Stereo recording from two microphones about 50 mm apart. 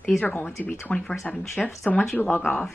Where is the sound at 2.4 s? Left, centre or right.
Left.